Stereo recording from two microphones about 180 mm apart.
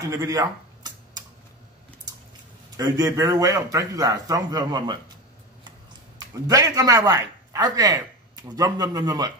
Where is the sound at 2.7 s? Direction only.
20° right (ahead or behind).